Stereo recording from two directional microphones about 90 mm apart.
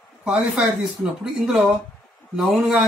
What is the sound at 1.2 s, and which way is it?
Speech, 5° right (ahead or behind).